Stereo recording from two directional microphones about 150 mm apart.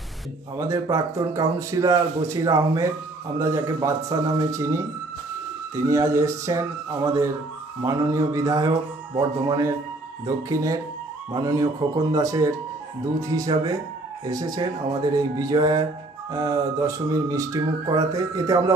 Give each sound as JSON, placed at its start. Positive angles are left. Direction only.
{"t": 0.6, "sound": "speech", "side_deg": -25}
{"t": 5.9, "sound": "speech", "side_deg": -20}